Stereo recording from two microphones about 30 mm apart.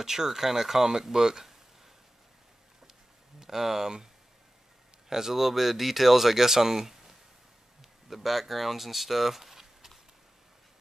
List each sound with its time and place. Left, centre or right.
0.0 s speech: centre
3.3 s speech: centre
5.1 s speech: centre